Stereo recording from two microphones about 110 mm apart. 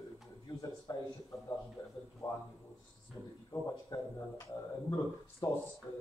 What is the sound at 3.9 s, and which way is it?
Speech, 35° left (ahead or behind).